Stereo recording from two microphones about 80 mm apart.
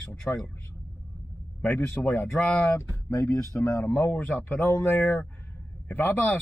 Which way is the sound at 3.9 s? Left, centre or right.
Centre.